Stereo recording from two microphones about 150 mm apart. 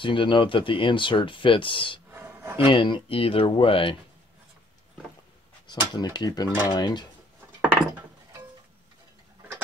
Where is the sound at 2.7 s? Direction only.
35° left (ahead or behind).